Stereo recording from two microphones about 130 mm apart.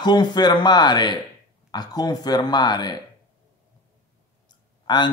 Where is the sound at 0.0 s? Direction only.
35° left (ahead or behind).